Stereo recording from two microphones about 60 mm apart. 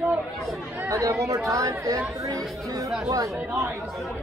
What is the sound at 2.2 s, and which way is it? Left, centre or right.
Speech, right.